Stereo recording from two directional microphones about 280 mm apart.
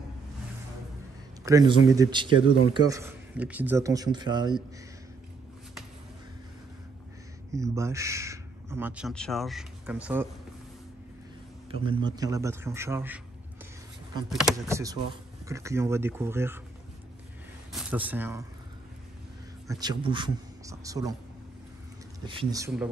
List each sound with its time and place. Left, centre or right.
1.4 s a man's voice: centre
7.5 s speech: centre
11.7 s a man's voice: centre
14.3 s a man's voice: centre
17.7 s speech: centre
19.7 s a man's voice: centre
22.2 s a man's voice: centre